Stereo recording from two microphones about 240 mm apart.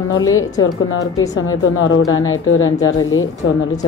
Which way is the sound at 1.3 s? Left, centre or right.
Left.